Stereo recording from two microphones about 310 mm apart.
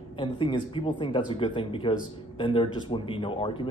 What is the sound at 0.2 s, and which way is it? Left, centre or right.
A man's voice, centre.